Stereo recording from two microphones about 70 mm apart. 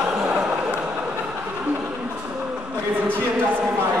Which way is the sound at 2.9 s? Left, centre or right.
Right.